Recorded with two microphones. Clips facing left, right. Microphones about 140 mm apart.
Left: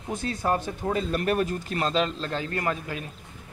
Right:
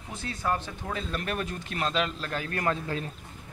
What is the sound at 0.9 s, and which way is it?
Speech, 45° left (ahead or behind).